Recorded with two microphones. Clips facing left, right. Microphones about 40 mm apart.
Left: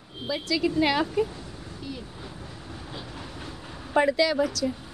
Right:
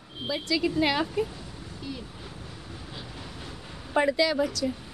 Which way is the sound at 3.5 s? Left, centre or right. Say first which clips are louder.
Left 2 dB; centre.